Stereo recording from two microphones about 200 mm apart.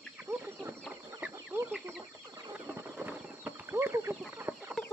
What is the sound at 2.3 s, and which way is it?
Bird, 15° right (ahead or behind).